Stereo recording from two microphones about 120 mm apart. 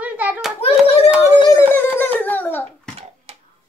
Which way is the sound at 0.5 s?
55° left (ahead or behind).